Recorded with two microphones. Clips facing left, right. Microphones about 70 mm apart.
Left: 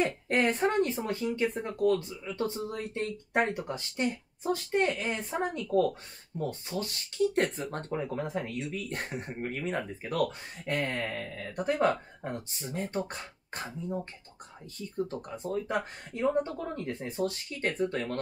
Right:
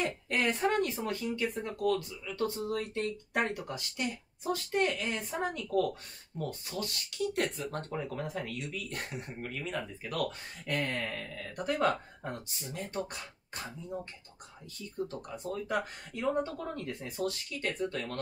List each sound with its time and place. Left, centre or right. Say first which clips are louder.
0.0 s speech: left 4 dB; left
15.2 s speech: left 3 dB; left